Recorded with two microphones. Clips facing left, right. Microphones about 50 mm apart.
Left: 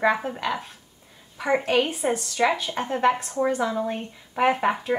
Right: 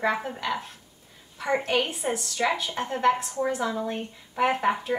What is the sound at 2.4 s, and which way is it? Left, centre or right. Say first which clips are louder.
Speech: left 3 dB; left.